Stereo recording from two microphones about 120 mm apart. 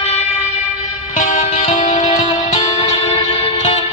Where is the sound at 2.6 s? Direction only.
60° left (ahead or behind).